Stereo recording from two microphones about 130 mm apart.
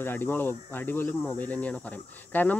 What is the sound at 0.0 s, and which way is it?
Speech, 15° left (ahead or behind).